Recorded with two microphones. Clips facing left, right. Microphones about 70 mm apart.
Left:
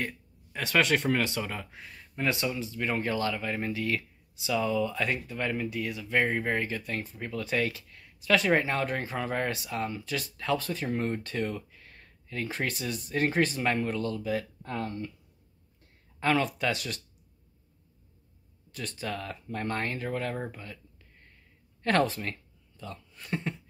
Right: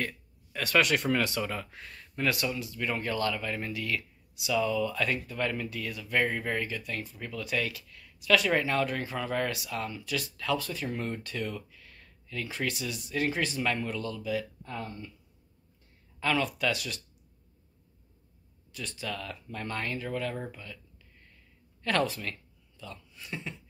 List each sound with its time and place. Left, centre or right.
0.0 s speech: left
14.6 s speech: left
16.2 s speech: left
18.7 s speech: left
20.4 s a sound: left
21.8 s speech: left
23.1 s speech: left